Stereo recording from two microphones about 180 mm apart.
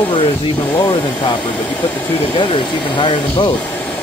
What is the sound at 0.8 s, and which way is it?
Speech, 30° left (ahead or behind).